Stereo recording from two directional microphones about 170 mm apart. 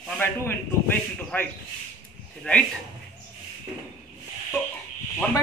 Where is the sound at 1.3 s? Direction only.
10° left (ahead or behind).